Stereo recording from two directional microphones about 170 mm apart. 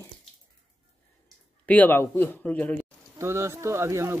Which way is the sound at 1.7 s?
10° left (ahead or behind).